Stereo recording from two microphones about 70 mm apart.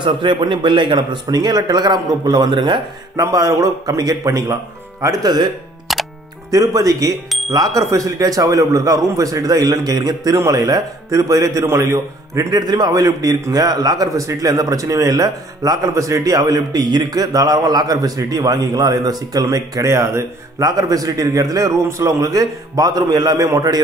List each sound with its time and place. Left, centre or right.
0.5 s a man's voice: right
3.2 s a man's voice: right
5.9 s music: centre
6.5 s a man's voice: right
12.5 s a man's voice: right
20.6 s a man's voice: right